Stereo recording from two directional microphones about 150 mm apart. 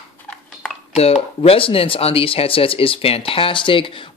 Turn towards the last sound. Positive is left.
turn(degrees=35)  # may be behind; listen again after turning